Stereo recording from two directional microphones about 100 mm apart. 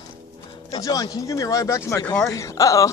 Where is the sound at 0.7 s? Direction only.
40° left (ahead or behind).